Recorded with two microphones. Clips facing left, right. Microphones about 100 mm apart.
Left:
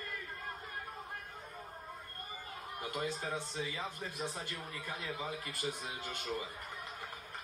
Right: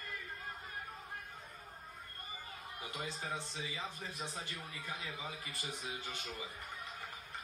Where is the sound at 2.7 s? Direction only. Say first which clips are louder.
Left 6 dB; 50° left (ahead or behind).